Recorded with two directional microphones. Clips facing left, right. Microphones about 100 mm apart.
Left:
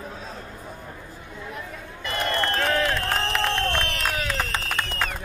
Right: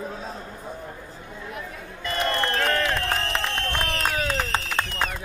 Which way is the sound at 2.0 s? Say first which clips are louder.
Right 1 dB; 30° right (ahead or behind).